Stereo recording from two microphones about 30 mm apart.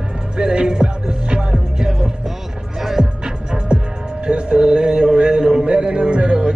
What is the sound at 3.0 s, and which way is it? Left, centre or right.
Music, right.